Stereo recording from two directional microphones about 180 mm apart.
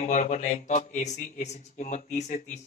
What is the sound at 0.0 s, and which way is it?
Speech, 40° left (ahead or behind).